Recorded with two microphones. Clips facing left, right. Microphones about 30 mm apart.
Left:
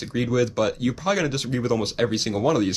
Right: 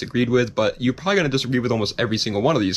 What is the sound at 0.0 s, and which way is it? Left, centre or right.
Speech, right.